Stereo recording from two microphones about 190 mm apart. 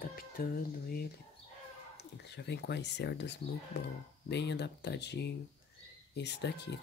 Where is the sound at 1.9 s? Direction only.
60° left (ahead or behind).